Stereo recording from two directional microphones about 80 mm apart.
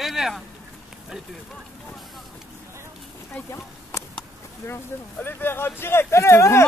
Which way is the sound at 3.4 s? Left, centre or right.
Left.